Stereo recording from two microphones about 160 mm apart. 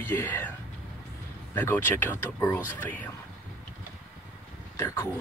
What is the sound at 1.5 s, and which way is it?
A man's voice, 10° left (ahead or behind).